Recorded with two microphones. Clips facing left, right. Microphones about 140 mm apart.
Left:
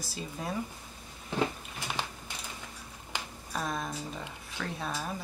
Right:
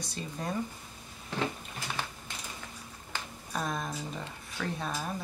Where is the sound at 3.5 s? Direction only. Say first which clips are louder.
Even; centre (ahead or behind).